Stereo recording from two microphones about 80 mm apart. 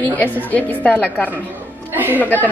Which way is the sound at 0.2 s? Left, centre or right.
Left.